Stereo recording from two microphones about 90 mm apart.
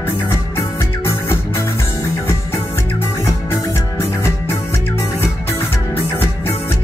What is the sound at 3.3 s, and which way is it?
Music, 35° left (ahead or behind).